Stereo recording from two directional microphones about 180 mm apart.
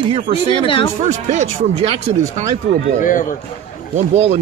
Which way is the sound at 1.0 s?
40° right (ahead or behind).